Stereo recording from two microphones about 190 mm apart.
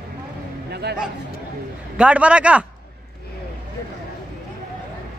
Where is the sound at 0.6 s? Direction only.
60° right (ahead or behind).